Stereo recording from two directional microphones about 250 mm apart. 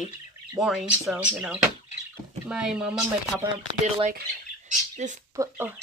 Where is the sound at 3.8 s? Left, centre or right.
Right.